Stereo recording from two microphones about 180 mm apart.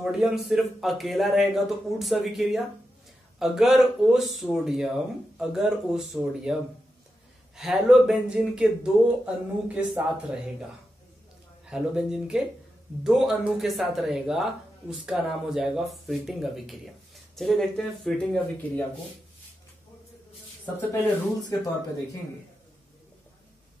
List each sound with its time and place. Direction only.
0.0 s speech: centre (ahead or behind)
11.6 s speech: 5° right (ahead or behind)
20.9 s speech: 15° left (ahead or behind)